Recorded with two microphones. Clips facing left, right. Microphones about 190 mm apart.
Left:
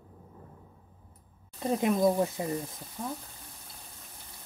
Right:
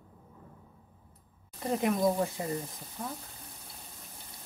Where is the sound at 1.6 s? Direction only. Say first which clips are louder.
Left 2 dB; 20° left (ahead or behind).